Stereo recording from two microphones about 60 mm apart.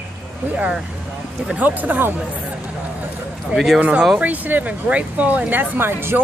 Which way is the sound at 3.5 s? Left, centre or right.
Centre.